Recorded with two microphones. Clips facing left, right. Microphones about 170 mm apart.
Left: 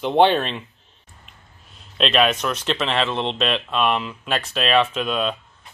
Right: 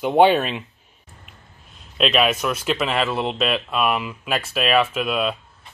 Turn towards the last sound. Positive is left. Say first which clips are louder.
# right 1 dB
turn(degrees=-5)  # may be behind; listen again after turning